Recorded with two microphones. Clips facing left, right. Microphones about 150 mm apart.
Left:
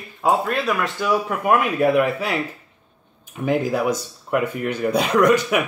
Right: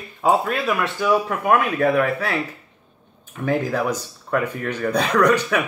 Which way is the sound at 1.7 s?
15° left (ahead or behind).